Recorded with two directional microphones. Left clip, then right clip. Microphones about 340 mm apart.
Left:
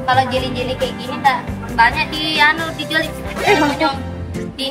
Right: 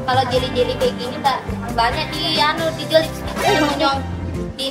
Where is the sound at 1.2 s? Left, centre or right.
Centre.